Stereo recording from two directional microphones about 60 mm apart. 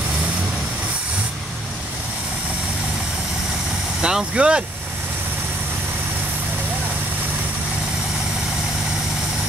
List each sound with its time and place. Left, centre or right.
4.0 s speech: centre